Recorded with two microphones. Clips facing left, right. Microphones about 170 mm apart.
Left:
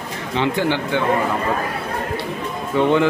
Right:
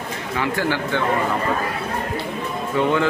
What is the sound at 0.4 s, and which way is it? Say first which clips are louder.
Speech: left 3 dB; 20° left (ahead or behind).